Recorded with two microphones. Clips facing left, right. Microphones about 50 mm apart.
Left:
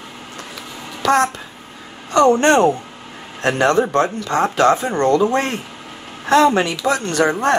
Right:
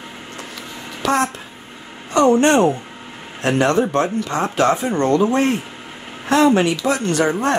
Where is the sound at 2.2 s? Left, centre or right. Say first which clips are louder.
Left 1 dB; left.